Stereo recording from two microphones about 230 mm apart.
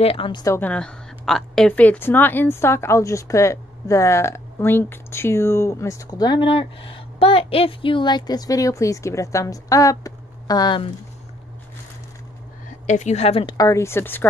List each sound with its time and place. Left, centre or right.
0.0 s a woman's voice: left
12.8 s a woman's voice: left; by 14.2 s centre